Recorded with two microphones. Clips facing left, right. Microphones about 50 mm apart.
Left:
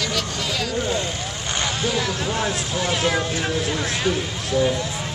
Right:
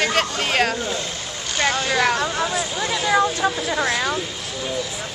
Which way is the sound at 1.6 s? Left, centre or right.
Right.